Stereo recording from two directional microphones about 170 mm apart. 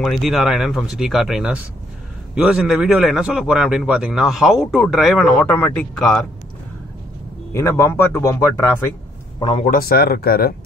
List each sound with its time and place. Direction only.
0.0 s a man's voice: centre (ahead or behind)
7.5 s speech: 15° left (ahead or behind)
9.4 s a man's voice: 35° left (ahead or behind)
9.7 s speech: 60° left (ahead or behind)